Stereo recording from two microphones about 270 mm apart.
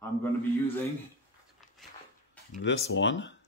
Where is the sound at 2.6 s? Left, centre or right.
Left.